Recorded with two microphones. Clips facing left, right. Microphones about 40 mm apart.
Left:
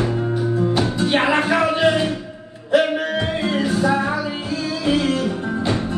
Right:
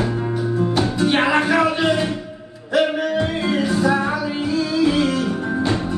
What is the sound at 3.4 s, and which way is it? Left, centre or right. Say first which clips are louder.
Music: left 1 dB; right.